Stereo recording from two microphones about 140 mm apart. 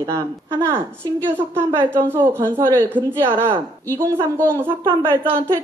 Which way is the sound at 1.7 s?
15° right (ahead or behind).